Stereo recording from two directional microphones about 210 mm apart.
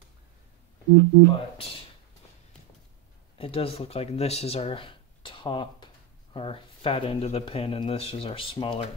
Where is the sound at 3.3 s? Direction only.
25° left (ahead or behind).